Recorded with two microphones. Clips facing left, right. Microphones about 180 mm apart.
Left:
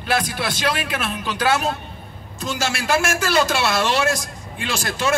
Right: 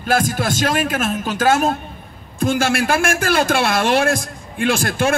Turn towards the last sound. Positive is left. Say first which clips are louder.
# right 5 dB
turn(degrees=-55)  # may be behind; listen again after turning